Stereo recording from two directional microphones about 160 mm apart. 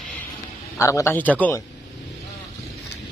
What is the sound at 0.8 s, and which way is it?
Speech, 20° left (ahead or behind).